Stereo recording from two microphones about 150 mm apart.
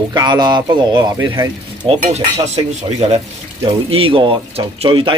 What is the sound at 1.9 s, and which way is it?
Stir, 45° right (ahead or behind).